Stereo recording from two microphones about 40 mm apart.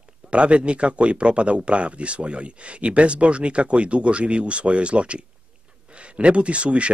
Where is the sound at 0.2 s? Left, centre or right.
Right.